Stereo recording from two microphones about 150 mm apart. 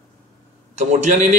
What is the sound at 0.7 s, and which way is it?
Speech, 50° right (ahead or behind).